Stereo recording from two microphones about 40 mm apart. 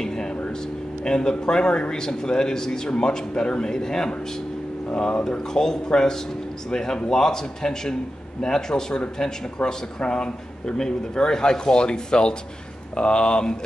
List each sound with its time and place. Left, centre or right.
0.0 s a sound: centre
1.0 s a man's voice: centre
5.5 s a man's voice: centre